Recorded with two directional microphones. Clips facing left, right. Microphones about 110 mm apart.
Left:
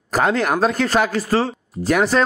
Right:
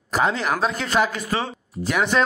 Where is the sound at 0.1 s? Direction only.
55° left (ahead or behind).